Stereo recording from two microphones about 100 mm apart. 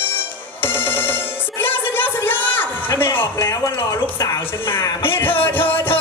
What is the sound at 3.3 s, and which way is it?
Speech, 30° left (ahead or behind).